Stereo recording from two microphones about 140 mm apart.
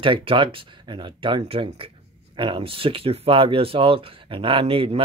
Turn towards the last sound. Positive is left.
turn(degrees=-40)  # may be behind; listen again after turning